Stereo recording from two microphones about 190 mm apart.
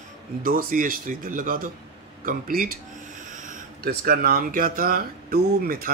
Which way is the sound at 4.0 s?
50° right (ahead or behind).